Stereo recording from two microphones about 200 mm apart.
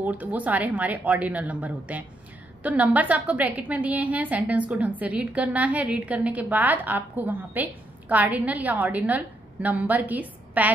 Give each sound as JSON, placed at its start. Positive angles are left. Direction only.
{"t": 0.0, "sound": "a woman's voice", "side_deg": -5}